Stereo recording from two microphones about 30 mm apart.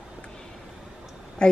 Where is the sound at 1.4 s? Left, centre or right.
Left.